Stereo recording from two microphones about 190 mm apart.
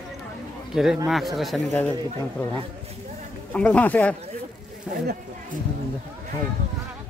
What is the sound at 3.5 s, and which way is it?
Speech, 5° left (ahead or behind).